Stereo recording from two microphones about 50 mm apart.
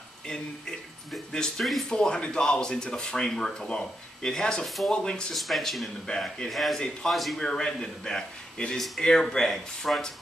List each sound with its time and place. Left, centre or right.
0.3 s speech: centre
1.6 s speech: centre
1.9 s speech: centre
4.6 s speech: centre
4.9 s speech: centre
5.3 s speech: centre
7.4 s speech: centre